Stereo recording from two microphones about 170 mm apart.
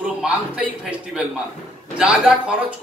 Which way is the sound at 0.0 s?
5° right (ahead or behind).